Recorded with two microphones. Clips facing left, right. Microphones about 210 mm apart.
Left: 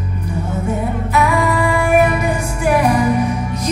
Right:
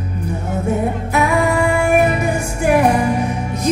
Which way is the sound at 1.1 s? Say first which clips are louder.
Even; 50° right (ahead or behind).